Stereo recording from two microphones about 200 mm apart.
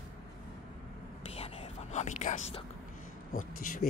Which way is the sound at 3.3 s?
45° left (ahead or behind).